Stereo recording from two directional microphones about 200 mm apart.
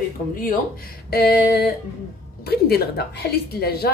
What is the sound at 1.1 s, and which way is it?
A woman's voice, 50° left (ahead or behind).